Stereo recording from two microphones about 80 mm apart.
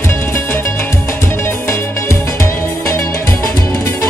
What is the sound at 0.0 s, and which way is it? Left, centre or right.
Music, left.